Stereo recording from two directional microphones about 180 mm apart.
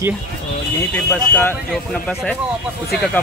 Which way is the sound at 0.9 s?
10° left (ahead or behind).